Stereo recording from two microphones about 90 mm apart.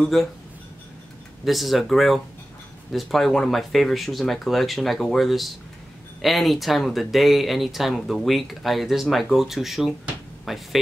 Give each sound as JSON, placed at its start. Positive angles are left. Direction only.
{"t": 0.0, "sound": "speech", "side_deg": 0}
{"t": 1.4, "sound": "speech", "side_deg": 0}